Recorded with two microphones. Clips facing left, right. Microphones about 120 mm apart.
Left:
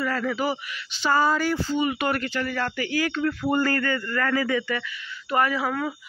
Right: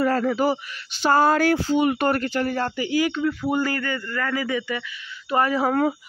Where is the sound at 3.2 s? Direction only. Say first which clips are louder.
Right 1 dB; 5° right (ahead or behind).